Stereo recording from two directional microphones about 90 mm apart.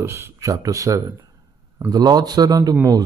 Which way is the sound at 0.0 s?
30° right (ahead or behind).